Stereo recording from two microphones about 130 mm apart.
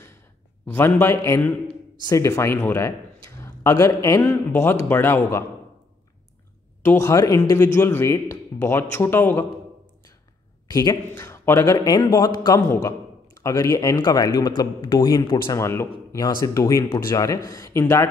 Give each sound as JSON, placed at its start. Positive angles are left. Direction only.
{"t": 0.7, "sound": "a man's voice", "side_deg": 20}
{"t": 6.8, "sound": "speech", "side_deg": 20}
{"t": 10.7, "sound": "a man's voice", "side_deg": 25}
{"t": 15.6, "sound": "speech", "side_deg": 20}